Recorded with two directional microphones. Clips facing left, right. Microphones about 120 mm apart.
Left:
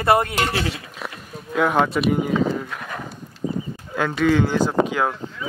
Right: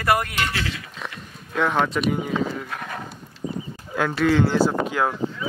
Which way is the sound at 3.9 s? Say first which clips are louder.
Left 1 dB; centre (ahead or behind).